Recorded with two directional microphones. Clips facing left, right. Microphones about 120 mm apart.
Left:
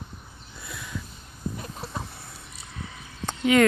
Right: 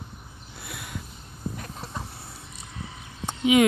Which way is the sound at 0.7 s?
65° right (ahead or behind).